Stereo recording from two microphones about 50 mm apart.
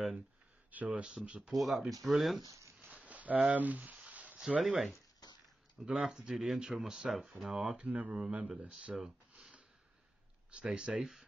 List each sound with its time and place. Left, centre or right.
0.7 s a sound: right
1.0 s a man's voice: right
1.5 s speech: centre
2.4 s speech: right
2.9 s a sound: right
4.4 s speech: centre
7.5 s a man's voice: right
8.2 s a man's voice: centre
9.3 s sniff: centre
10.5 s a man's voice: centre
10.9 s speech: centre